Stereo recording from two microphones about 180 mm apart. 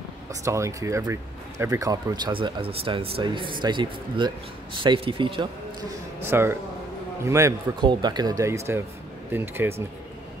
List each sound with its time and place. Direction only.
0.3 s speech: 15° right (ahead or behind)
6.2 s speech: 15° right (ahead or behind)